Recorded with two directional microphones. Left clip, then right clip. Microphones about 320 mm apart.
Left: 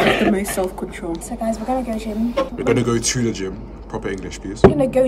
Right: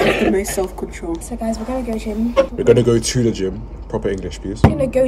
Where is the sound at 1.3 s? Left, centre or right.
Left.